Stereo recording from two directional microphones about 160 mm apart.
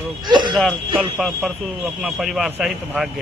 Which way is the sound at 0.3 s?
30° right (ahead or behind).